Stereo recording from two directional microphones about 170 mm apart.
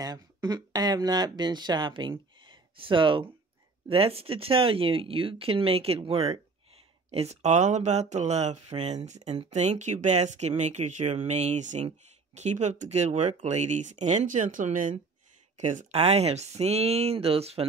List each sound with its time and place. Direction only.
0.0 s speech: 20° right (ahead or behind)